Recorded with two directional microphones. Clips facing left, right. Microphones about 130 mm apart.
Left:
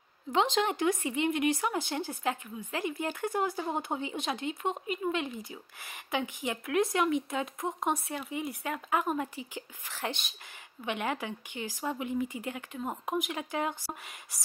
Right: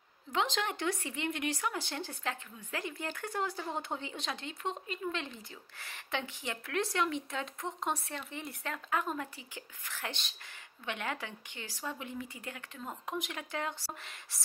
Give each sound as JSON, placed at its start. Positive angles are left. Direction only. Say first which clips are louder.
{"t": 0.3, "sound": "speech", "louder": "left 6 dB", "side_deg": 20}